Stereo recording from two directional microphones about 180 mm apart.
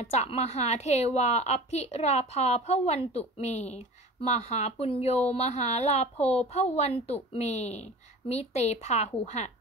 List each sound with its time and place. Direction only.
0.0 s a woman's voice: 40° left (ahead or behind)